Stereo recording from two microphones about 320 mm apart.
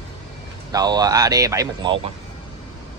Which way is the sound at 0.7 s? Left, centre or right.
Centre.